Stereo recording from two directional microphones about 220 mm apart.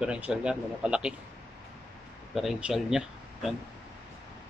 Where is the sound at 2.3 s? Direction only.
Centre (ahead or behind).